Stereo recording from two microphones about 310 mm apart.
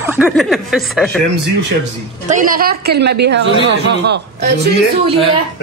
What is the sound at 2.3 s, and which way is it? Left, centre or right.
A woman's voice, right.